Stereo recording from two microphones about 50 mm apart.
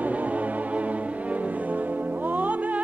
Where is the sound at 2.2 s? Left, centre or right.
Right.